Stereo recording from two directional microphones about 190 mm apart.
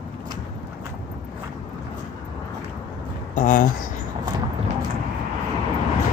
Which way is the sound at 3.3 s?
40° left (ahead or behind).